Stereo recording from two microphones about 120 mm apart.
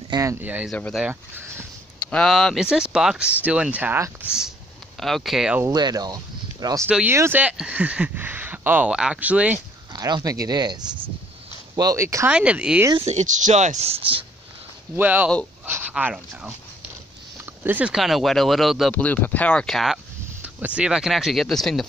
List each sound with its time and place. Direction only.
0.1 s speech: 25° right (ahead or behind)
0.4 s speech: 15° right (ahead or behind)
2.0 s speech: 5° left (ahead or behind); by 4.0 s 15° right (ahead or behind)
5.0 s speech: centre (ahead or behind)
5.7 s speech: 35° right (ahead or behind)
6.9 s speech: 10° right (ahead or behind)
9.9 s speech: 35° right (ahead or behind)
12.3 s speech: 10° right (ahead or behind)
13.0 s speech: 80° right; by 14.2 s 50° right (ahead or behind)
15.0 s speech: 15° right (ahead or behind)
17.6 s speech: 10° right (ahead or behind)
18.9 s speech: 10° left (ahead or behind)
20.4 s speech: 10° right (ahead or behind)